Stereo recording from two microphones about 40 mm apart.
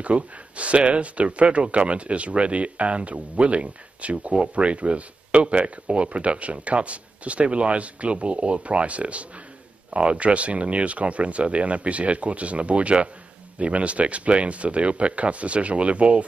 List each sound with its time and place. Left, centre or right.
0.0 s speech: right